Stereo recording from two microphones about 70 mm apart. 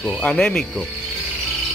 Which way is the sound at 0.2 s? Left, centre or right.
Centre.